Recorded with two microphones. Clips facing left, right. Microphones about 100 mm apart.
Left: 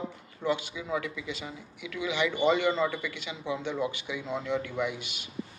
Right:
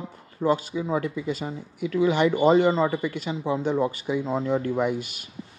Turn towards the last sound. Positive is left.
turn(degrees=-45)  # may be behind; listen again after turning